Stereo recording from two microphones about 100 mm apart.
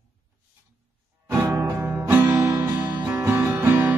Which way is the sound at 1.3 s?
25° right (ahead or behind).